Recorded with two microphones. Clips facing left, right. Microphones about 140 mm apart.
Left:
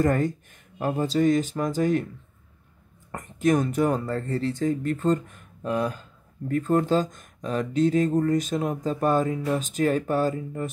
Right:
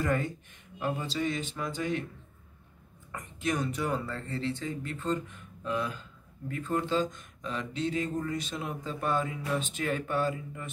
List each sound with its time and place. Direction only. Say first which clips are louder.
0.0 s speech: left 7 dB; 45° left (ahead or behind)
3.1 s speech: left 10 dB; 45° left (ahead or behind)